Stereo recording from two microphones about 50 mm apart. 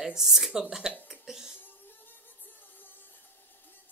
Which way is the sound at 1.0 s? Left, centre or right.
Centre.